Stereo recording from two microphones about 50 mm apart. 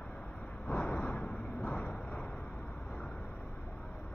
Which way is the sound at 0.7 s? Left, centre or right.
Left.